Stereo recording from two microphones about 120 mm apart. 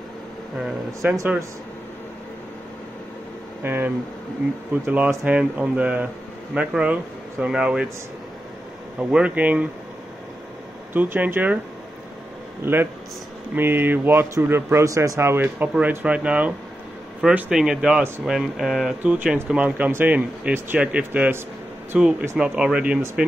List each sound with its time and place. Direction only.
1.0 s speech: 15° right (ahead or behind)
3.6 s speech: 15° right (ahead or behind)
9.1 s speech: 10° right (ahead or behind)
10.9 s speech: 15° right (ahead or behind)
12.6 s speech: 15° right (ahead or behind)